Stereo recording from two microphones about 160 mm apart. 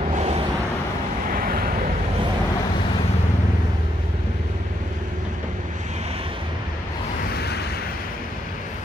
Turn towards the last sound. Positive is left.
turn(degrees=90)